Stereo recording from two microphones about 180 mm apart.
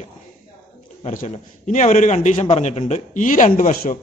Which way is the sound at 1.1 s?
40° left (ahead or behind).